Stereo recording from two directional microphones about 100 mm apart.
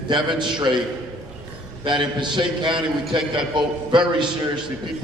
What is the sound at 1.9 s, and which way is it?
A man's voice, 50° right (ahead or behind).